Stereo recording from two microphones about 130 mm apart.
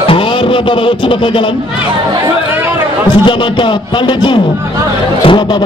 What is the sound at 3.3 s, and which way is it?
Music, 40° left (ahead or behind).